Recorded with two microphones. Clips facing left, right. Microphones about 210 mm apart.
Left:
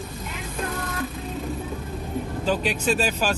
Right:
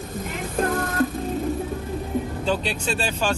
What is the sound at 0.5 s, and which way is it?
Music, 50° right (ahead or behind).